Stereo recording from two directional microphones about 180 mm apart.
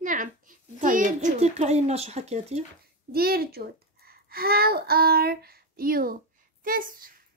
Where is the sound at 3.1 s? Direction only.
60° right (ahead or behind).